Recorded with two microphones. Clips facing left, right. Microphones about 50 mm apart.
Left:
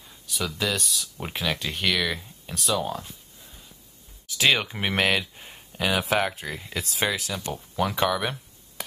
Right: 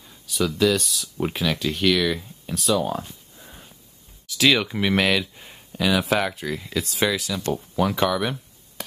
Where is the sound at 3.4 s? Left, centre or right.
Right.